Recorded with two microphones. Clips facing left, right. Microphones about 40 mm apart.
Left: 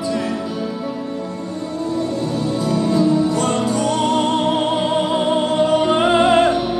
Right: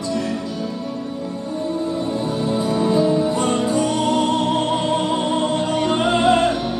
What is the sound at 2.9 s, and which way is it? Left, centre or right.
Music, right.